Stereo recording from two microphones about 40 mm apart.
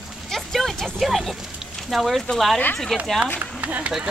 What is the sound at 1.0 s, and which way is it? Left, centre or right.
Speech, centre.